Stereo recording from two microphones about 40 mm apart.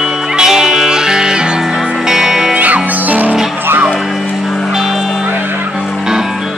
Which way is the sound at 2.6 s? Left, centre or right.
Right.